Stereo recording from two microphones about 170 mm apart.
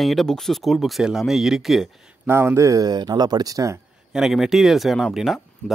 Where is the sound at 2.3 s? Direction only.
15° right (ahead or behind).